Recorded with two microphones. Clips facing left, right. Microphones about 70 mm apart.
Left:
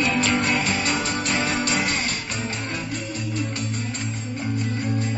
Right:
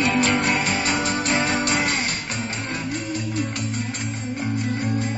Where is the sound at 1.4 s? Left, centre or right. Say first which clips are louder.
Right 2 dB; centre.